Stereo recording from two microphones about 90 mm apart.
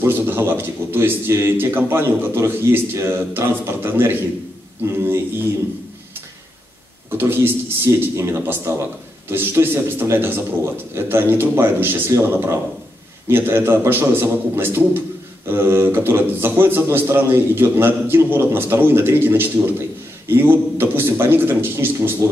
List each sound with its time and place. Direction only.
0.0 s a man's voice: 25° right (ahead or behind)
7.2 s a man's voice: 25° right (ahead or behind)